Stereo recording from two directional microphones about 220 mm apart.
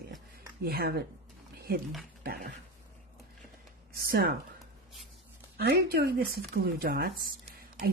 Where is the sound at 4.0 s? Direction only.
45° right (ahead or behind).